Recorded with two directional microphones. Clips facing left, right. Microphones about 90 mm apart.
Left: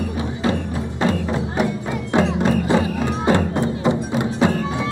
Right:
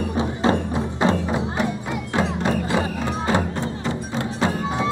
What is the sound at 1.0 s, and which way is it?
Music, 20° right (ahead or behind).